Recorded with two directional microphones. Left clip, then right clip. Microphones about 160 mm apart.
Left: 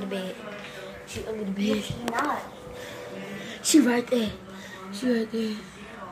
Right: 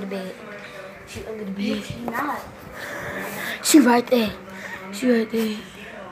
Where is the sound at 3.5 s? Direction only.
15° right (ahead or behind).